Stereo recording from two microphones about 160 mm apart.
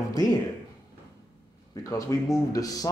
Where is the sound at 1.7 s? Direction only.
20° left (ahead or behind).